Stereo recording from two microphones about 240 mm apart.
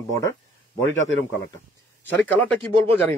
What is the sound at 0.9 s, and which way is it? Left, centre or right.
Speech, left.